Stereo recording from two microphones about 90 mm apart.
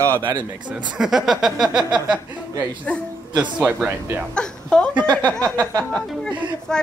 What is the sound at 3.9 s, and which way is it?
Speech, 20° right (ahead or behind).